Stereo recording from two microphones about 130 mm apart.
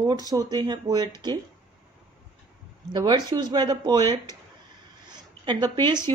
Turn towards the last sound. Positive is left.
turn(degrees=-35)  # may be behind; listen again after turning